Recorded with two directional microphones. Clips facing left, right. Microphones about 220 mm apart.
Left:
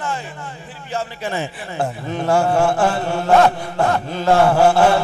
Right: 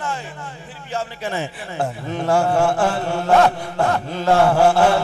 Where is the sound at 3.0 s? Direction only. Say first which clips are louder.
Left 1 dB; 10° left (ahead or behind).